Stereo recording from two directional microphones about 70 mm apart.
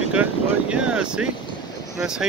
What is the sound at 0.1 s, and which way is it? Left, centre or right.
Vehicle, centre.